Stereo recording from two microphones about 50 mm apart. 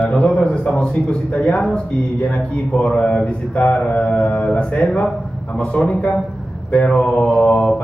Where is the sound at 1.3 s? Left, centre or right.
Left.